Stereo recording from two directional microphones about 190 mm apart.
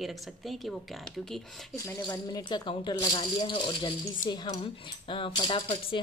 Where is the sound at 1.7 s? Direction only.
15° left (ahead or behind).